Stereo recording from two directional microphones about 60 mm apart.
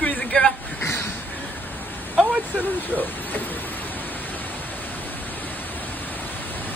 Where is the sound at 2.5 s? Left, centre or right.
Left.